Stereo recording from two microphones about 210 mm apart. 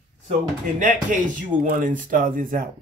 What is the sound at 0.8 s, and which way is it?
Speech, 40° right (ahead or behind).